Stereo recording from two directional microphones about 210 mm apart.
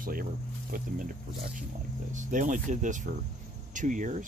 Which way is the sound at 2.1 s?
35° right (ahead or behind).